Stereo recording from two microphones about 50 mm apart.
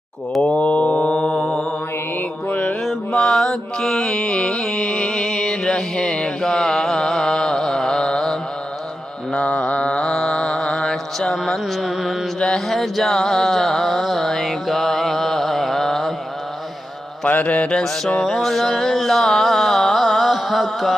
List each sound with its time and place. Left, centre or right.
0.4 s mantra: left
3.1 s mantra: centre
6.4 s a sound: centre
9.3 s mantra: left
11.8 s mantra: centre
12.4 s mantra: centre
17.3 s mantra: left
17.6 s mantra: centre
18.2 s music: centre